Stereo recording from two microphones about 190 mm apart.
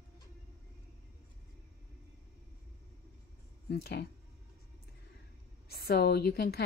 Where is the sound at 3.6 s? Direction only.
55° left (ahead or behind).